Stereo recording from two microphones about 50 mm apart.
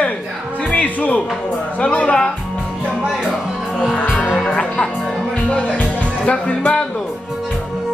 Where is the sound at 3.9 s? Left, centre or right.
Centre.